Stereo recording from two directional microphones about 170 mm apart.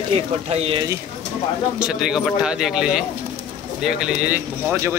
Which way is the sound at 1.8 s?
5° right (ahead or behind).